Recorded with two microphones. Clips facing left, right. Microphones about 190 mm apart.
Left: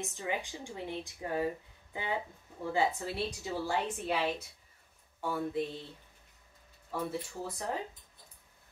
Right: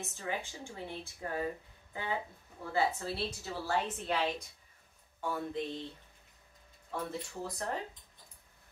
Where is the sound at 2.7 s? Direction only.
15° left (ahead or behind).